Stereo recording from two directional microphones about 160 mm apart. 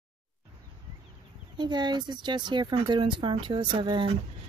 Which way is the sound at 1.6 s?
25° right (ahead or behind).